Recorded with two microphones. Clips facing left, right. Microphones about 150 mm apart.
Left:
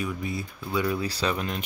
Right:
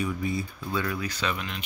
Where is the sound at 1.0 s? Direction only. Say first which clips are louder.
Left 3 dB; 35° left (ahead or behind).